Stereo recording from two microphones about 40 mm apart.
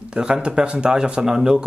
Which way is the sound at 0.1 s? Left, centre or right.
Right.